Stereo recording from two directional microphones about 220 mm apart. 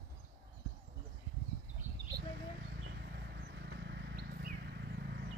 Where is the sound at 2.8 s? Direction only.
50° right (ahead or behind).